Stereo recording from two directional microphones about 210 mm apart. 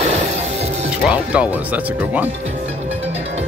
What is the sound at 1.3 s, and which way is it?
Speech, 5° right (ahead or behind).